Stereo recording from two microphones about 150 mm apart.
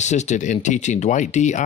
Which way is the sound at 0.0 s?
50° left (ahead or behind).